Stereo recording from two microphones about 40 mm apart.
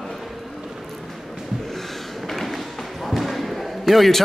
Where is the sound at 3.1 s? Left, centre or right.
Centre.